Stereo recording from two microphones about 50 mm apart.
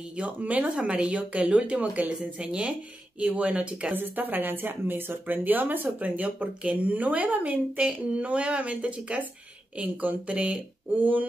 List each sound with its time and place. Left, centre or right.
0.2 s speech: right
0.7 s speech: centre
3.9 s speech: right